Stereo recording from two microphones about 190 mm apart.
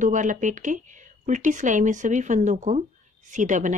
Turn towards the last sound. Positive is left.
turn(degrees=-40)  # may be behind; listen again after turning